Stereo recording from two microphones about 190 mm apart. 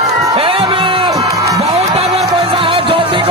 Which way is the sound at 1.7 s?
30° right (ahead or behind).